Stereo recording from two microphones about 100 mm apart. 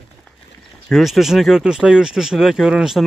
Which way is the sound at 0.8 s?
Centre (ahead or behind).